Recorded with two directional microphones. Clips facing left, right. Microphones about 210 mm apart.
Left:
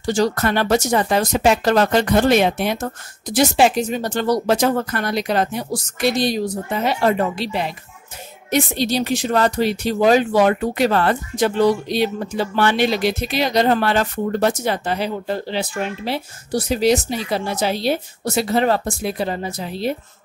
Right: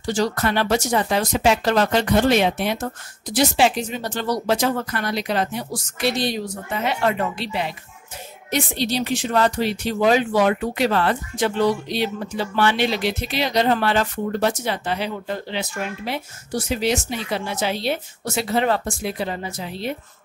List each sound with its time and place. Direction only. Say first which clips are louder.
0.0 s speech: left 3 dB; 45° left (ahead or behind)